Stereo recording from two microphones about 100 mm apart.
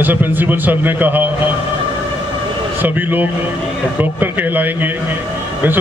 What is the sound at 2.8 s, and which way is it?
A man's voice, 20° right (ahead or behind).